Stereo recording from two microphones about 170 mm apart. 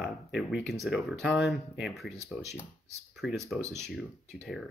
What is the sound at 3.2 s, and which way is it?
Speech, centre (ahead or behind).